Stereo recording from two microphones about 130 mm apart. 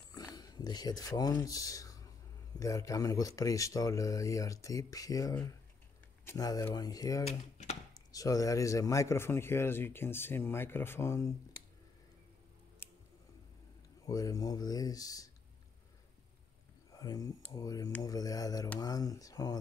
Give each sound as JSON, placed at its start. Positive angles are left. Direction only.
{"t": 0.1, "sound": "a man's voice", "side_deg": 30}
{"t": 7.2, "sound": "speech", "side_deg": 55}
{"t": 7.9, "sound": "a man's voice", "side_deg": 30}
{"t": 14.0, "sound": "a man's voice", "side_deg": 25}
{"t": 16.9, "sound": "a man's voice", "side_deg": 30}